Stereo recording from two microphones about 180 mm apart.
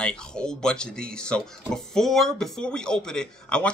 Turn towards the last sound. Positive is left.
turn(degrees=5)  # may be behind; listen again after turning